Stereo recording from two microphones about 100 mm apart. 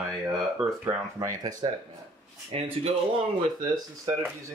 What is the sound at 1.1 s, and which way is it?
Speech, 40° right (ahead or behind).